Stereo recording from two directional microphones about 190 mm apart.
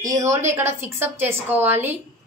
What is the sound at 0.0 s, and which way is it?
A woman's voice, 15° right (ahead or behind).